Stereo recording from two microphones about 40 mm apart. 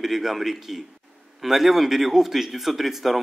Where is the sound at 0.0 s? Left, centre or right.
Centre.